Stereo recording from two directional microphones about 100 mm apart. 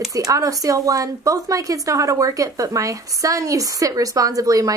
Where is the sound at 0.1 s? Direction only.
35° right (ahead or behind).